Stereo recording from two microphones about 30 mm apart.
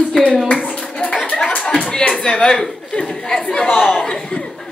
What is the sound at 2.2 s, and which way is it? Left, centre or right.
Speech, left.